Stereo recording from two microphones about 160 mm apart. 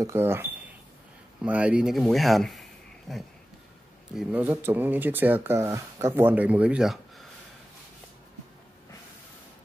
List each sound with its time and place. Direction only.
0.0 s speech: 15° right (ahead or behind)